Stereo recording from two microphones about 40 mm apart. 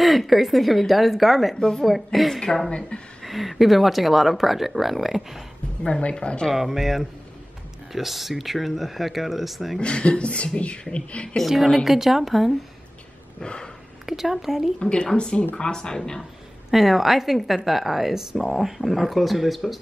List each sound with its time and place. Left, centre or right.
0.0 s speech: centre
1.6 s speech: centre
2.1 s speech: centre
2.9 s speech: left
3.3 s speech: centre
5.9 s speech: left
6.5 s speech: centre
9.8 s speech: left
11.4 s speech: centre
13.4 s speech: left
14.0 s speech: centre
14.8 s speech: left
16.7 s speech: centre